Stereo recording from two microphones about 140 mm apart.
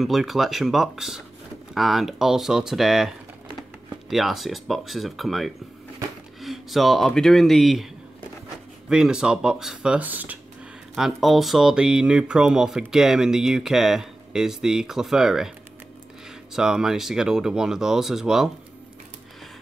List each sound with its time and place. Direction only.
0.0 s speech: centre (ahead or behind)
11.0 s speech: centre (ahead or behind)
16.5 s speech: 5° right (ahead or behind)